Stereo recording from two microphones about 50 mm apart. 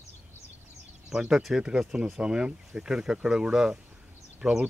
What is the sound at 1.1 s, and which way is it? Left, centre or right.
Speech, centre.